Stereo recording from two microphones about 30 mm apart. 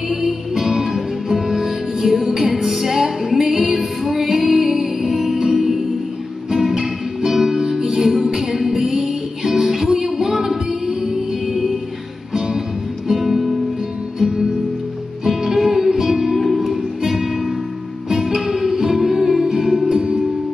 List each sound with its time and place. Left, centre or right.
0.1 s music: centre
13.1 s music: centre
15.2 s music: centre